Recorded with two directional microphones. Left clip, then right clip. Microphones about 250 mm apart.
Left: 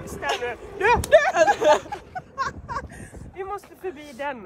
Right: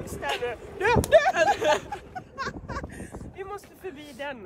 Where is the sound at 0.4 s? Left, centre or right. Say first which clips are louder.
Left 3 dB; left.